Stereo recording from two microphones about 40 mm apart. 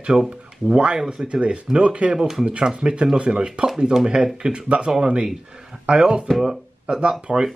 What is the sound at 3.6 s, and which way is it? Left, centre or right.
Speech, centre.